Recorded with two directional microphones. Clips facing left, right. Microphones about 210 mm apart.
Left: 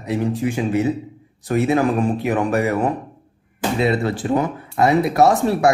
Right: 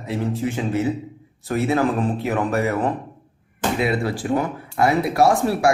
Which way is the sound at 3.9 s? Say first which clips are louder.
Left 2 dB; 25° left (ahead or behind).